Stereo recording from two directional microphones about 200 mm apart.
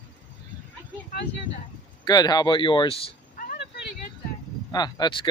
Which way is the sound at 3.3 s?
45° left (ahead or behind).